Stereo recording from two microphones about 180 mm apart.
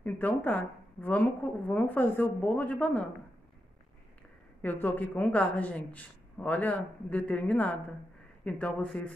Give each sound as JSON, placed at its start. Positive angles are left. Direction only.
{"t": 0.0, "sound": "a woman's voice", "side_deg": 10}
{"t": 4.6, "sound": "a woman's voice", "side_deg": 10}